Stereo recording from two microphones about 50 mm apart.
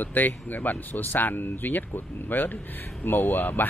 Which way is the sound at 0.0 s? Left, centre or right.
Left.